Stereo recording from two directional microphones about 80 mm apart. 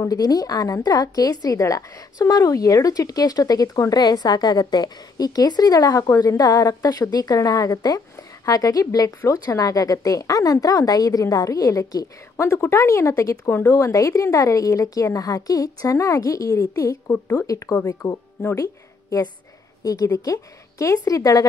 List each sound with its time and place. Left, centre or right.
0.0 s a woman's voice: left
17.1 s speech: left
17.5 s a woman's voice: left